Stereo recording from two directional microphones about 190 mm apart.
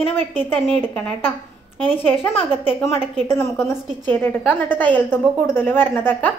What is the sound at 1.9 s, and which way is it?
A woman's voice, 10° left (ahead or behind).